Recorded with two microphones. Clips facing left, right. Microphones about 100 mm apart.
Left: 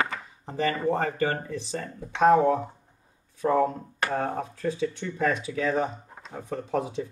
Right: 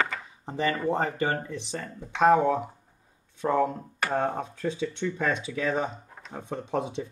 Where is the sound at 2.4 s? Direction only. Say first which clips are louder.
Left 2 dB; 35° left (ahead or behind).